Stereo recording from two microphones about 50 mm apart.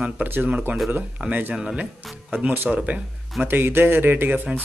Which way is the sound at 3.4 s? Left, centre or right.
Right.